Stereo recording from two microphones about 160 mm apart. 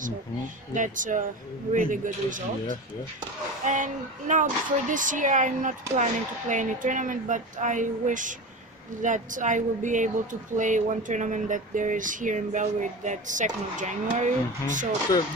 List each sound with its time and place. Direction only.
0.7 s speech: 55° right (ahead or behind)